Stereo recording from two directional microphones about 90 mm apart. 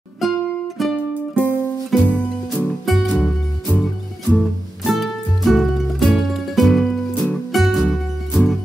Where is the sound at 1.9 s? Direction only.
Centre (ahead or behind).